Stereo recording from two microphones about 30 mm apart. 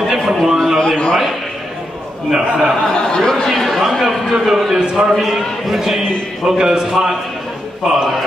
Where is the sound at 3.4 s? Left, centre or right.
Centre.